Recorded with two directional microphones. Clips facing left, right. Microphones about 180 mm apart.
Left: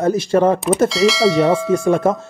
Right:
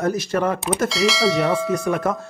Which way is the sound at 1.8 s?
25° left (ahead or behind).